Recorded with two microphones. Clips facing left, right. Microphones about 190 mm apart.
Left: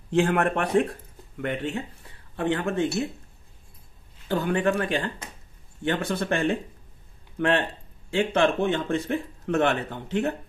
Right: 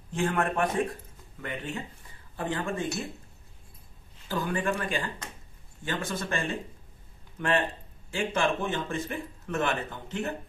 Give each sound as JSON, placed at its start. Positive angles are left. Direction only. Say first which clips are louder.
{"t": 0.1, "sound": "speech", "louder": "left 6 dB", "side_deg": 70}
{"t": 4.3, "sound": "speech", "louder": "left 6 dB", "side_deg": 65}